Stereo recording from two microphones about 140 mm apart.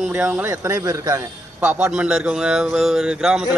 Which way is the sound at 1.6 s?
10° right (ahead or behind).